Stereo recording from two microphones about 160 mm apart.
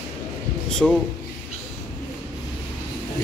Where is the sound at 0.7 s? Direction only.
5° left (ahead or behind).